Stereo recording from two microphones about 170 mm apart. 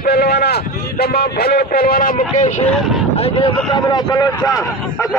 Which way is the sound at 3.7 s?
25° left (ahead or behind).